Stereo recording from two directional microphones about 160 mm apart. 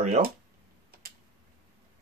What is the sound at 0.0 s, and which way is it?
Speech, 50° right (ahead or behind).